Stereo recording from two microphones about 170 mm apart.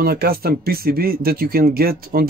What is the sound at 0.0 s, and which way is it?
Speech, 65° right (ahead or behind).